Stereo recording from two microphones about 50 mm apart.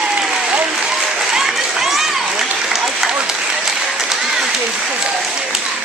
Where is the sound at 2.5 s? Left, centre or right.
Centre.